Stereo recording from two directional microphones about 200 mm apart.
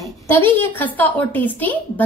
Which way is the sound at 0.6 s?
10° left (ahead or behind).